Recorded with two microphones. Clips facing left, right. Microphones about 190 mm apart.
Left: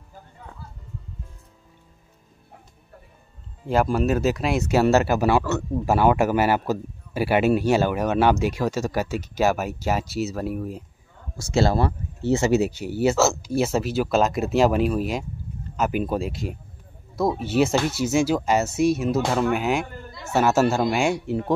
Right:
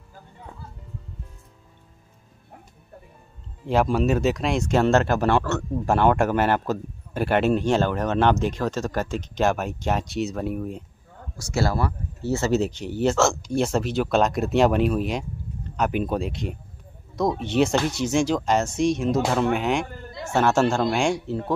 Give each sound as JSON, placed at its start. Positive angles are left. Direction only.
{"t": 3.6, "sound": "speech", "side_deg": 0}
{"t": 11.3, "sound": "speech", "side_deg": 25}